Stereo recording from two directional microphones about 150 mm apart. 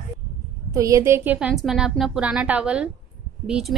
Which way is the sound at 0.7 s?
20° right (ahead or behind).